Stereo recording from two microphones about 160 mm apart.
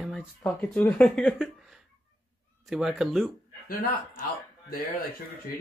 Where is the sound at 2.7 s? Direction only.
5° right (ahead or behind).